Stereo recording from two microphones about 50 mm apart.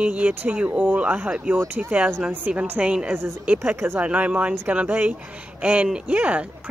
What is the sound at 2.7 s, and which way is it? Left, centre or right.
Speech, right.